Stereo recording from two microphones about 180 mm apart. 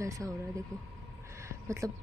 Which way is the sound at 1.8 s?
20° right (ahead or behind).